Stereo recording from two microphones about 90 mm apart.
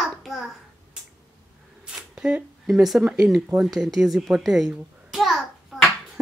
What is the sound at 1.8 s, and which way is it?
A child's voice, 10° right (ahead or behind).